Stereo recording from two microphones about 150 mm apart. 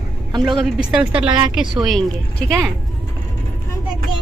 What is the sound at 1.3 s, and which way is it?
Speech, 30° right (ahead or behind).